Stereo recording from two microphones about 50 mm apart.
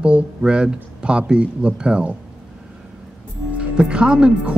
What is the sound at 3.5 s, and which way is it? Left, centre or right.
Speech, right.